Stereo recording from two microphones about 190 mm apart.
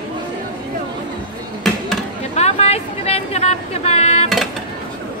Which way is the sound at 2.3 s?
35° left (ahead or behind).